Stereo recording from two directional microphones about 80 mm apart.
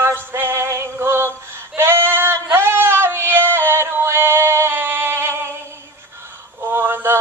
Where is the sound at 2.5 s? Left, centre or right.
Right.